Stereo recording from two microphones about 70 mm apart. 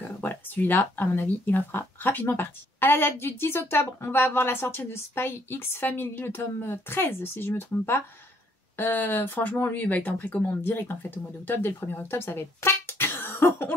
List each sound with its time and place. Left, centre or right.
0.2 s speech: left
10.6 s speech: left
12.5 s music: left